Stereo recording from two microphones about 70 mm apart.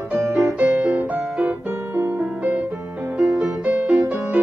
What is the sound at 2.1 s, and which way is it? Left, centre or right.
Music, right.